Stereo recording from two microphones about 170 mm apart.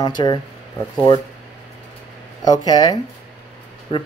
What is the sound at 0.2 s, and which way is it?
Speech, 30° left (ahead or behind).